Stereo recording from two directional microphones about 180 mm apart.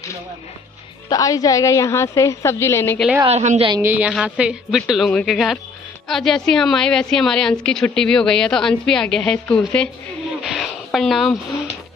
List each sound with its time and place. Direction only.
1.0 s a woman's voice: 20° left (ahead or behind)
3.3 s a woman's voice: 35° right (ahead or behind)
3.7 s a woman's voice: 10° right (ahead or behind); by 9.8 s 10° left (ahead or behind)
10.4 s a sound: centre (ahead or behind)